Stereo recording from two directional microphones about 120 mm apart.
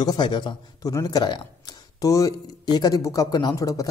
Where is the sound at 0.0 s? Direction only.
35° left (ahead or behind).